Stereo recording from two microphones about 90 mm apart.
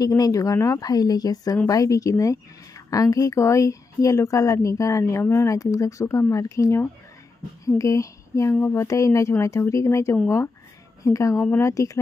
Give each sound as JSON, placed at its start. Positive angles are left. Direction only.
{"t": 0.0, "sound": "a woman's voice", "side_deg": 40}